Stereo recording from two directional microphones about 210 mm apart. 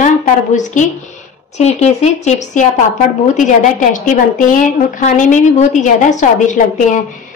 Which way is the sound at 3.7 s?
40° left (ahead or behind).